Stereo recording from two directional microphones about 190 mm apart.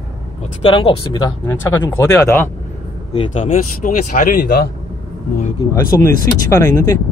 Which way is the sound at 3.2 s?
30° left (ahead or behind).